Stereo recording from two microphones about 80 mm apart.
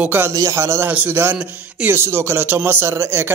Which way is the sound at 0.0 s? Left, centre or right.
Right.